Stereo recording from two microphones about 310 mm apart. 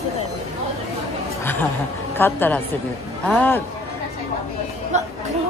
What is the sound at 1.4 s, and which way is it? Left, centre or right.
A woman's voice, centre.